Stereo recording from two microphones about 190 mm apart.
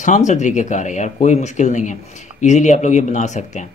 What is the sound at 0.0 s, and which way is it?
Speech, 40° left (ahead or behind).